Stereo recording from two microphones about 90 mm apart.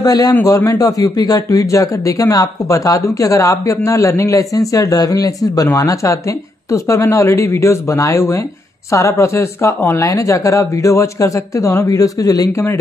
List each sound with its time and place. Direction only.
0.0 s a man's voice: 45° left (ahead or behind)
0.4 s a man's voice: 30° left (ahead or behind)
0.7 s speech: 45° left (ahead or behind)